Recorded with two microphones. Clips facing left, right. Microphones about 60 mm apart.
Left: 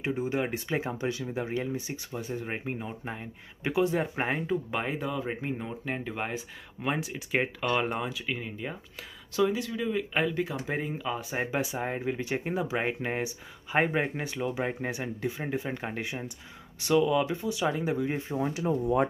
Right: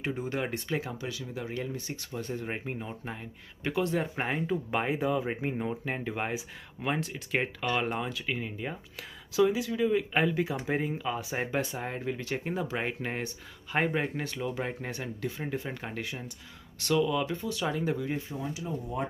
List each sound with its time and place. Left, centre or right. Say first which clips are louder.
0.0 s speech: left 3 dB; centre
1.5 s speech: left 3 dB; centre
18.3 s speech: left 7 dB; left